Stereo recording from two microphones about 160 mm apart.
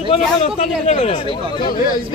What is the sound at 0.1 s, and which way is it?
Speech, 45° left (ahead or behind).